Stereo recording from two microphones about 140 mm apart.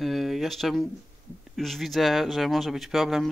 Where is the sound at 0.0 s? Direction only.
Centre (ahead or behind).